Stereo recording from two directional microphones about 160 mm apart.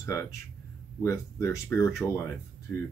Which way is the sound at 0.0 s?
15° left (ahead or behind).